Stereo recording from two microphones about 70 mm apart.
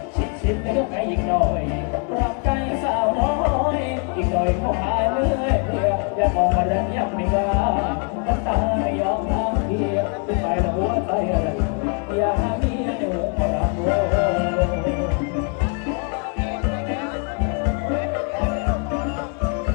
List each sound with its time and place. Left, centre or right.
0.5 s speech: centre
2.1 s music: centre
17.8 s music: centre